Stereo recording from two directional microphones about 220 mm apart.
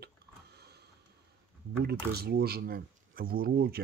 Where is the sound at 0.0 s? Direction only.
45° right (ahead or behind).